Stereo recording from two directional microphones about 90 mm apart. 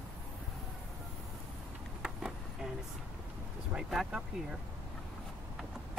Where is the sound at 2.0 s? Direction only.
5° right (ahead or behind).